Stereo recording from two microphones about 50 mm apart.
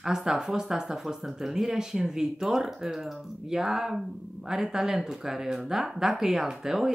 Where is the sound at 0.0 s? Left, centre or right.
Centre.